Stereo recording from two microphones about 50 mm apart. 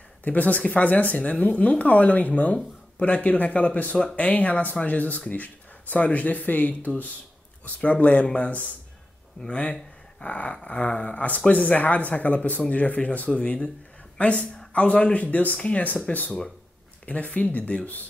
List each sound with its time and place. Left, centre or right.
0.2 s a woman's voice: left
17.0 s speech: left